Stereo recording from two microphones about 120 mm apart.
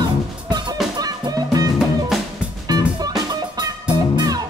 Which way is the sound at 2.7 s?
35° right (ahead or behind).